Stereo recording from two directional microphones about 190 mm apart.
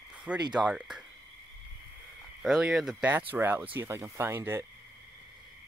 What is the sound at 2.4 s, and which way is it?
Speech, centre (ahead or behind).